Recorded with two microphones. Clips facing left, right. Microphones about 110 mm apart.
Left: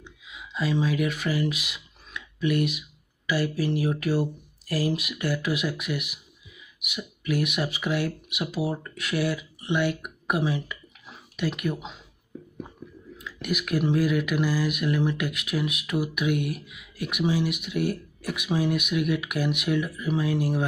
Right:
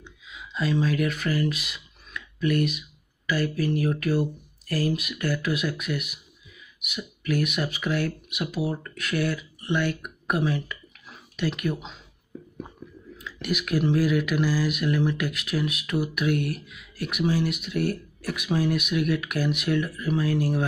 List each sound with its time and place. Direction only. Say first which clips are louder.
0.0 s a sound: even; 5° left (ahead or behind)
3.3 s speech: even; 15° left (ahead or behind)
13.2 s speech: right 1 dB; 5° left (ahead or behind)